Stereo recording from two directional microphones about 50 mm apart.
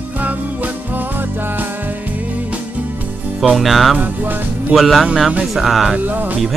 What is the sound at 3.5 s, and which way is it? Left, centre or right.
Speech, centre.